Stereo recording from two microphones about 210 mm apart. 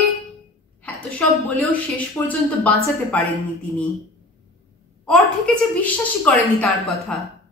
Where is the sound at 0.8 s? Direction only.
5° left (ahead or behind).